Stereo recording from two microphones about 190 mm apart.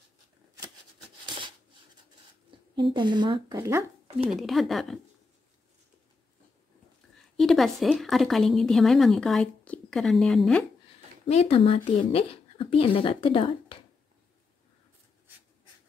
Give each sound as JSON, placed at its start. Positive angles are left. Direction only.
{"t": 2.8, "sound": "speech", "side_deg": -25}
{"t": 4.3, "sound": "a woman's voice", "side_deg": 0}
{"t": 7.3, "sound": "a woman's voice", "side_deg": 0}
{"t": 11.2, "sound": "speech", "side_deg": 30}